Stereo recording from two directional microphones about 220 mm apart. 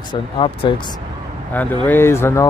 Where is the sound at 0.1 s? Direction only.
25° left (ahead or behind).